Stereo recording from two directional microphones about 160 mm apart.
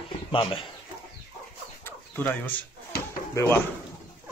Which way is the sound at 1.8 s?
10° left (ahead or behind).